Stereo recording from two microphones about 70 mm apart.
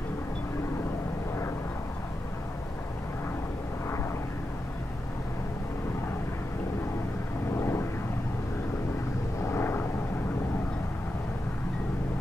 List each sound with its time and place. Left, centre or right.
7.5 s vehicle: left
9.4 s vehicle: left